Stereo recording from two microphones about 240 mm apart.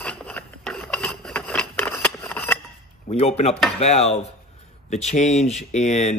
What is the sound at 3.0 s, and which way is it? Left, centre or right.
Speech, left.